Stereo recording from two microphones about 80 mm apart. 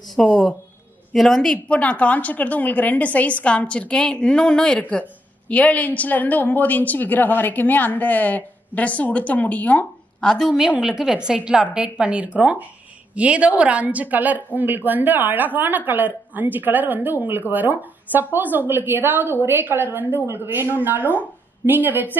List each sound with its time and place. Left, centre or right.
0.2 s a woman's voice: centre
10.2 s a woman's voice: centre; by 22.1 s right